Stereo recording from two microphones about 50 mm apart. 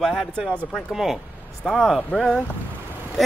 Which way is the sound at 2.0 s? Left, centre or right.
Left.